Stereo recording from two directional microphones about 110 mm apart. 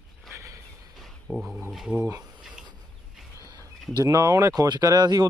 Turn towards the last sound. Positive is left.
turn(degrees=-40)  # may be behind; listen again after turning